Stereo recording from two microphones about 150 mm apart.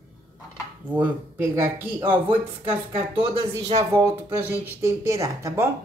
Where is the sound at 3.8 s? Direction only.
20° right (ahead or behind).